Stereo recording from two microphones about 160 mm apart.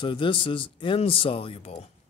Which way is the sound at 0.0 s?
30° left (ahead or behind).